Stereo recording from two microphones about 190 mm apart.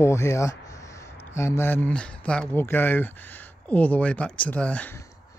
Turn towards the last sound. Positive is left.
turn(degrees=5)  # may be behind; listen again after turning